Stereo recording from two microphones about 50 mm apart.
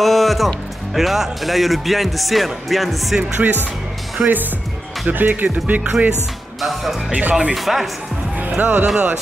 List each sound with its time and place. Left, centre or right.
0.0 s music: centre
0.9 s speech: centre
3.2 s speech: right
5.1 s speech: right
6.6 s speech: centre
7.1 s speech: right
7.5 s speech: centre
8.4 s speech: right